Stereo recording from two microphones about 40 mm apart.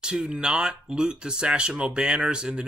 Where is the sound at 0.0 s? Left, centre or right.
Right.